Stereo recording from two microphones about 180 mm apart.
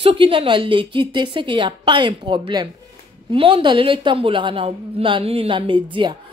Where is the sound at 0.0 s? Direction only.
30° right (ahead or behind).